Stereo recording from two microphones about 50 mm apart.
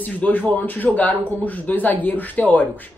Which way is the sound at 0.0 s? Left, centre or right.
Left.